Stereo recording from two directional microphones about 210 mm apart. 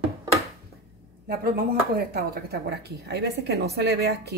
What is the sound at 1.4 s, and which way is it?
Speech, 45° right (ahead or behind).